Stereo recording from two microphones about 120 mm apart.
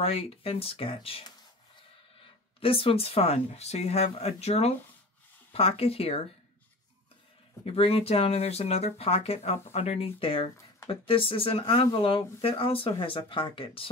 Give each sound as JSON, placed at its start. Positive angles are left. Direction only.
{"t": 0.0, "sound": "speech", "side_deg": 55}
{"t": 2.6, "sound": "speech", "side_deg": 50}
{"t": 7.6, "sound": "speech", "side_deg": 55}